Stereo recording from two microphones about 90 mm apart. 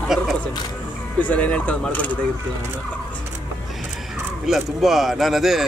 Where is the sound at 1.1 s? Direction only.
15° left (ahead or behind).